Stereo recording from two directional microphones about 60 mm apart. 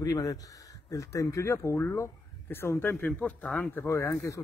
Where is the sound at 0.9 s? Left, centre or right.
Left.